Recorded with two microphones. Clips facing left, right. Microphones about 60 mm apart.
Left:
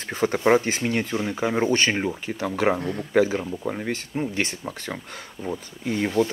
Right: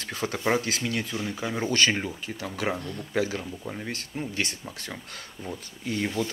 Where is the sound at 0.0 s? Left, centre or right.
Left.